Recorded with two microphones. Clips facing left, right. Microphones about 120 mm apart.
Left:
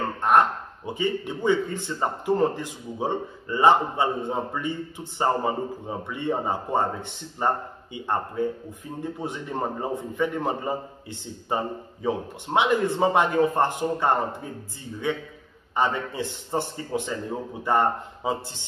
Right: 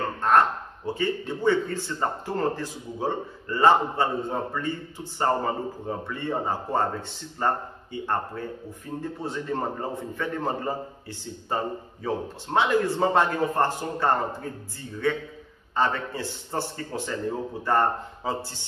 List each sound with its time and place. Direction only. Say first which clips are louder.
0.2 s a man's voice: left 1 dB; 15° left (ahead or behind)